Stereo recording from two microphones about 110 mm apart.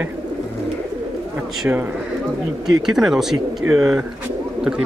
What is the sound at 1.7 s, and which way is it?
Speech, 15° right (ahead or behind).